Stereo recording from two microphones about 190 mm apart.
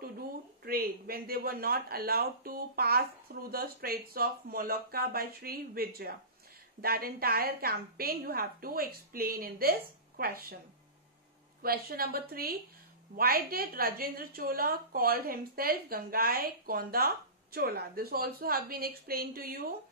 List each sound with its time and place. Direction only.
0.7 s a woman's voice: 50° right (ahead or behind)
11.6 s a woman's voice: 50° right (ahead or behind)